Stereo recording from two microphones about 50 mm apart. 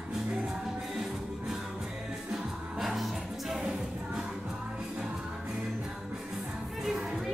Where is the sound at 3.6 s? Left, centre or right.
Centre.